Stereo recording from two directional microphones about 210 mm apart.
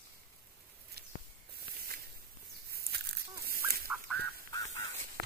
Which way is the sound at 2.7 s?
45° right (ahead or behind).